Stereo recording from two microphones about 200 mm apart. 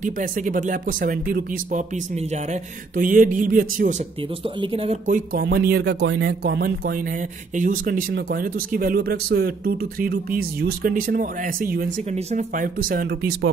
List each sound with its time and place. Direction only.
0.0 s speech: 40° right (ahead or behind)
3.0 s speech: 45° right (ahead or behind)
7.5 s speech: 40° right (ahead or behind)